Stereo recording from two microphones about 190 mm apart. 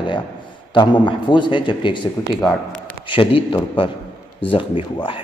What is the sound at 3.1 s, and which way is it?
A man's voice, 25° left (ahead or behind).